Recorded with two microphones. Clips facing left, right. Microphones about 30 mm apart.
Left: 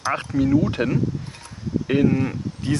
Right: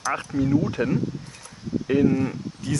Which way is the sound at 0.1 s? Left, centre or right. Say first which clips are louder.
Left 3 dB; left.